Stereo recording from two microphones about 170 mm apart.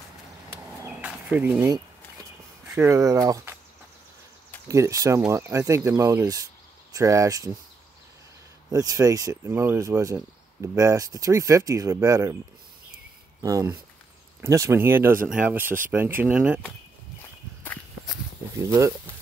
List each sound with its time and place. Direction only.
0.8 s a sound: 10° right (ahead or behind)
2.7 s speech: 15° right (ahead or behind)
4.6 s speech: 20° right (ahead or behind)
8.7 s speech: 20° right (ahead or behind)
13.4 s speech: 20° right (ahead or behind)
18.6 s speech: 20° right (ahead or behind)